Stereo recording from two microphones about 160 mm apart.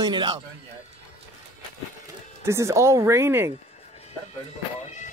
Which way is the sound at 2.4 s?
20° right (ahead or behind).